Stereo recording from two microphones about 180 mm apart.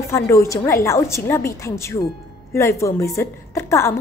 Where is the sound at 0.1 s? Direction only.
15° left (ahead or behind).